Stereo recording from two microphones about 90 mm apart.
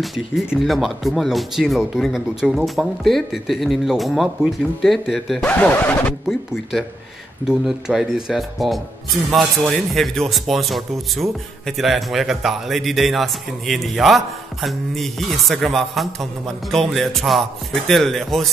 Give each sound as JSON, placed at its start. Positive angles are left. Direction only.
{"t": 0.0, "sound": "speech", "side_deg": 0}
{"t": 5.4, "sound": "speech", "side_deg": 15}
{"t": 6.2, "sound": "speech", "side_deg": -5}